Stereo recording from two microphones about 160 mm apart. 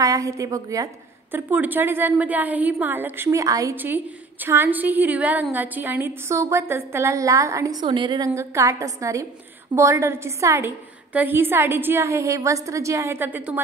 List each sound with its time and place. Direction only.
0.0 s a woman's voice: 20° right (ahead or behind)